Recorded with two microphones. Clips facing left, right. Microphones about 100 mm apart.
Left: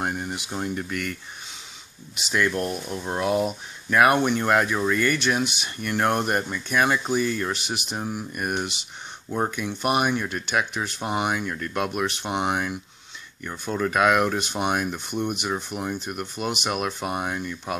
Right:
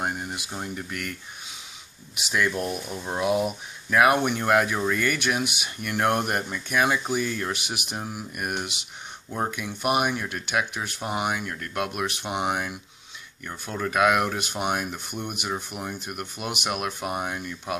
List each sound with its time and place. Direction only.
0.0 s speech: 5° right (ahead or behind)
2.1 s speech: 10° right (ahead or behind)